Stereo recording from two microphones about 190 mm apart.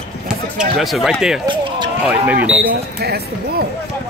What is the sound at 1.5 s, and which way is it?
Basketball bounce, 25° right (ahead or behind).